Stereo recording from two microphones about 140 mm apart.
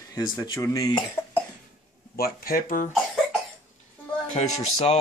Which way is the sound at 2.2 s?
90° left.